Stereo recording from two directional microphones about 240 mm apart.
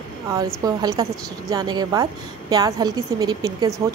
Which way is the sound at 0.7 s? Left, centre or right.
Centre.